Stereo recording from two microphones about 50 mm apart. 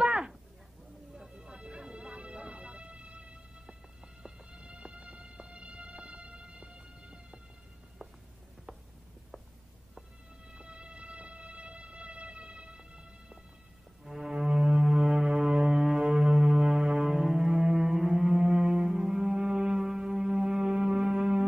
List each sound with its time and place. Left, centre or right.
0.0 s a sound: centre
1.1 s music: centre
10.5 s music: right
14.0 s foghorn: centre
19.8 s music: centre